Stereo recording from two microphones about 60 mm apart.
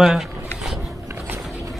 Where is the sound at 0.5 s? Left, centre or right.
Centre.